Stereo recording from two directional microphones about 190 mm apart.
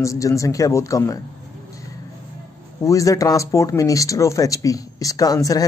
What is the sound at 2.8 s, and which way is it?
Speech, 15° left (ahead or behind).